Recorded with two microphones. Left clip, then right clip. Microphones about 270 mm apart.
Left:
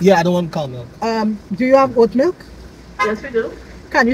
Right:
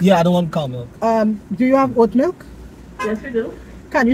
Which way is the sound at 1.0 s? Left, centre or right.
Centre.